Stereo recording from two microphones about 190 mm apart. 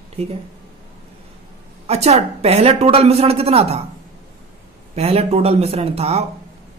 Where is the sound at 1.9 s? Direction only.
35° right (ahead or behind).